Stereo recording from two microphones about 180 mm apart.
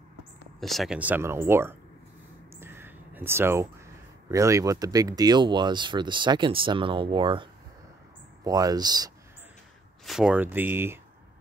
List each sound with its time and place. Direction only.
0.6 s speech: centre (ahead or behind)
2.5 s a sound: 10° right (ahead or behind)
4.3 s speech: 15° right (ahead or behind)
8.5 s speech: 20° right (ahead or behind)
10.0 s speech: 5° right (ahead or behind)